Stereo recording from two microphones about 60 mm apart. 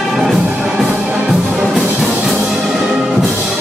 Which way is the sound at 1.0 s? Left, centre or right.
Centre.